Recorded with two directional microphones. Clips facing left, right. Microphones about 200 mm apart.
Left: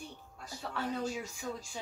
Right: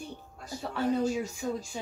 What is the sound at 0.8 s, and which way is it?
Speech, 45° right (ahead or behind).